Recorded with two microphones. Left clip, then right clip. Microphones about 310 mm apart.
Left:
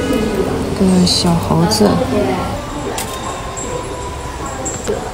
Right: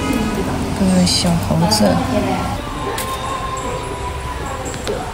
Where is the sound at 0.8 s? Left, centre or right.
Centre.